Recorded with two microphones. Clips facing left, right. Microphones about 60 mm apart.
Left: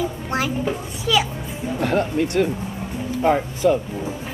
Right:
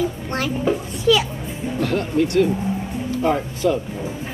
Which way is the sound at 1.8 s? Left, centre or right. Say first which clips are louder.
Even; left.